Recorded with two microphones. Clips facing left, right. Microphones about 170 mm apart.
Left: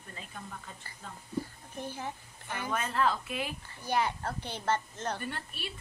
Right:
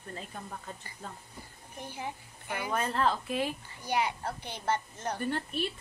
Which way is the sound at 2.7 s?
30° right (ahead or behind).